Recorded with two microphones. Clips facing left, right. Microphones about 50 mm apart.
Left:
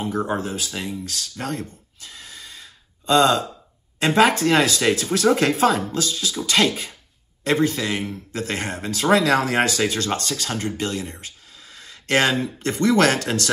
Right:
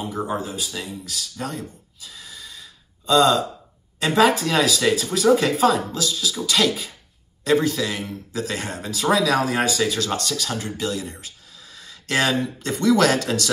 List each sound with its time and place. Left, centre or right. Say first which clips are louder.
0.3 s speech: left 1 dB; left
1.3 s gasp: left 2 dB; left
4.0 s speech: left 1 dB; left
5.1 s speech: right 2 dB; left
5.7 s speech: even; left